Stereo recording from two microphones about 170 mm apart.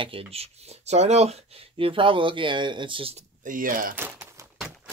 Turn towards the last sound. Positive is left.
turn(degrees=-15)  # may be behind; listen again after turning